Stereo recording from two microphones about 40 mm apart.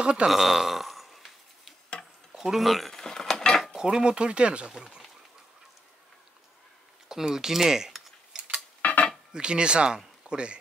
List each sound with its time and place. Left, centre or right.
0.0 s dishes: right
0.3 s burping: centre
2.4 s speech: centre
3.1 s mechanisms: centre
3.6 s dishes: centre
4.7 s speech: right
7.1 s cutlery: centre
8.8 s dishes: left
9.3 s dishes: right
9.9 s speech: right